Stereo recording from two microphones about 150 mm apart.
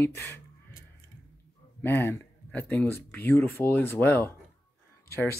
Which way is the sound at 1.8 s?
15° left (ahead or behind).